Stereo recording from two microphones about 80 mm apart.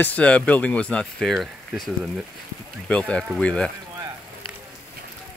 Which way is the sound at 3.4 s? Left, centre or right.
Centre.